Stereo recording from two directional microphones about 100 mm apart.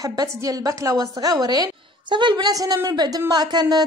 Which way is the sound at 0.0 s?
40° right (ahead or behind).